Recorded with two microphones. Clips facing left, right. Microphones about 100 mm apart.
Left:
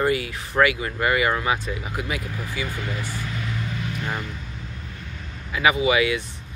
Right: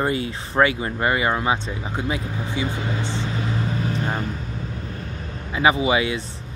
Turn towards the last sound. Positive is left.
turn(degrees=-30)  # may be behind; listen again after turning